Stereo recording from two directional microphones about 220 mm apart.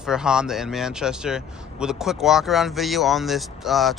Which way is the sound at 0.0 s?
5° right (ahead or behind).